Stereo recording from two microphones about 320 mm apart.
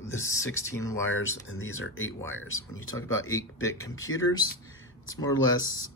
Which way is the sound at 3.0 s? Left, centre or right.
Centre.